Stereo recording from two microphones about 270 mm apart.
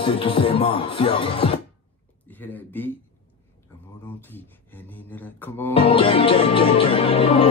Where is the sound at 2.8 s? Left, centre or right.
Centre.